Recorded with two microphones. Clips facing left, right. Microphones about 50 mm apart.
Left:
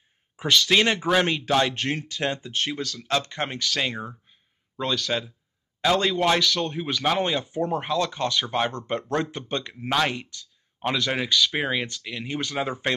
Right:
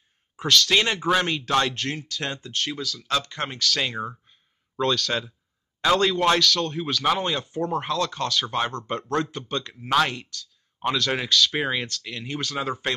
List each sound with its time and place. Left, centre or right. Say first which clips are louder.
0.4 s speech: even; centre
2.8 s speech: left 1 dB; left
3.1 s speech: left 1 dB; left
4.7 s speech: right 2 dB; centre
6.3 s speech: right 1 dB; centre
9.8 s speech: right 2 dB; centre
10.1 s a sound: left 1 dB; centre
11.0 s speech: right 1 dB; centre